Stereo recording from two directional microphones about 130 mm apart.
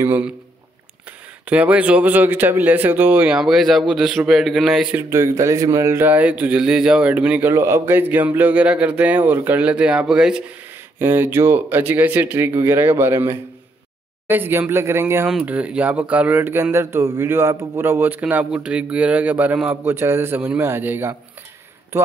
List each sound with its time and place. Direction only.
0.0 s speech: 15° right (ahead or behind)
1.5 s speech: 10° right (ahead or behind)
4.9 s speech: 20° right (ahead or behind); by 10.4 s 5° right (ahead or behind)
11.0 s speech: 15° right (ahead or behind)
15.2 s speech: 10° right (ahead or behind)